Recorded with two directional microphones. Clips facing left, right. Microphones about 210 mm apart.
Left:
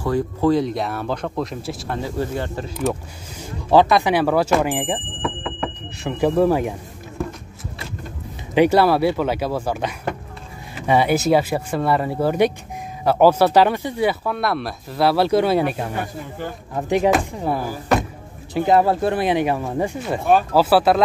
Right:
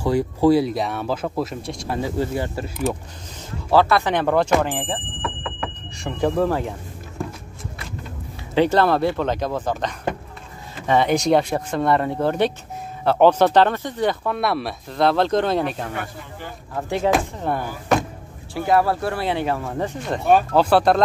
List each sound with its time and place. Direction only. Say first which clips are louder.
0.0 s speech: right 2 dB; 10° right (ahead or behind)
2.0 s speech: right 2 dB; 15° right (ahead or behind)
3.7 s speech: left 2 dB; 15° left (ahead or behind)
8.5 s speech: left 2 dB; 10° left (ahead or behind)
15.9 s speech: left 3 dB; 45° left (ahead or behind)
16.7 s speech: left 4 dB; 15° left (ahead or behind)
17.1 s speech: left 1 dB; 5° left (ahead or behind)
18.5 s speech: left 3 dB; 20° left (ahead or behind); by 21.0 s 5° left (ahead or behind)